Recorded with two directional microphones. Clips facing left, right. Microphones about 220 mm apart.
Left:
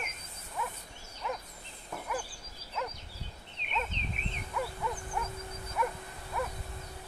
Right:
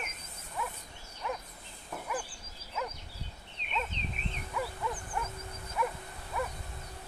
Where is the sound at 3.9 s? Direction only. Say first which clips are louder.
Right 1 dB; 30° left (ahead or behind).